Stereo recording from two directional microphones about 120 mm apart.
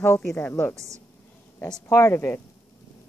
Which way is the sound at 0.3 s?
15° left (ahead or behind).